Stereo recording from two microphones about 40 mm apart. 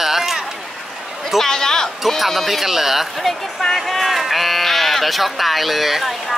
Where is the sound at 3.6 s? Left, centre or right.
Centre.